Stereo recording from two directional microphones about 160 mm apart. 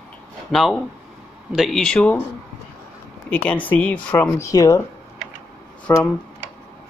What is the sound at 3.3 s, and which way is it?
Speech, 10° left (ahead or behind).